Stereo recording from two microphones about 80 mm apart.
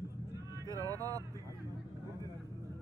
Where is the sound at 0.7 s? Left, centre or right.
Right.